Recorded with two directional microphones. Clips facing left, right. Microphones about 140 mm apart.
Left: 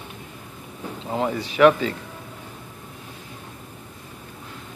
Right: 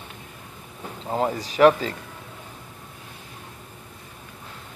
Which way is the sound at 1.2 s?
40° right (ahead or behind).